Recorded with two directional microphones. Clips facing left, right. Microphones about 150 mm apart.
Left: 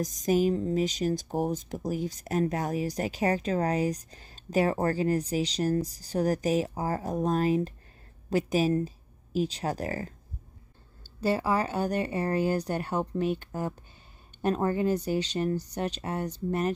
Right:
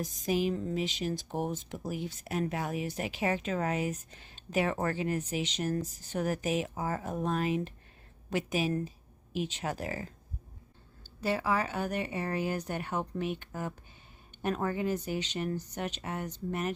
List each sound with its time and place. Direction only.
0.0 s speech: 40° left (ahead or behind)
11.1 s speech: 35° left (ahead or behind)